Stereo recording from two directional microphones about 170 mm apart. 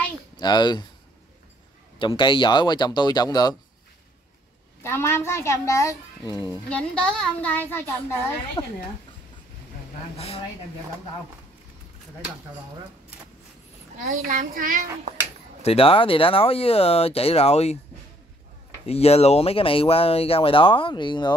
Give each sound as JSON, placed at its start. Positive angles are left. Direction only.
{"t": 0.4, "sound": "speech", "side_deg": 25}
{"t": 2.0, "sound": "speech", "side_deg": 30}
{"t": 4.8, "sound": "a child's voice", "side_deg": 15}
{"t": 6.7, "sound": "a child's voice", "side_deg": 5}
{"t": 8.6, "sound": "speech", "side_deg": 30}
{"t": 10.1, "sound": "speech", "side_deg": 35}
{"t": 13.9, "sound": "a child's voice", "side_deg": -50}
{"t": 15.6, "sound": "speech", "side_deg": 35}
{"t": 18.9, "sound": "speech", "side_deg": 35}